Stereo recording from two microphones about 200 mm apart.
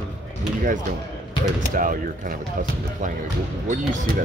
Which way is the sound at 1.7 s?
45° right (ahead or behind).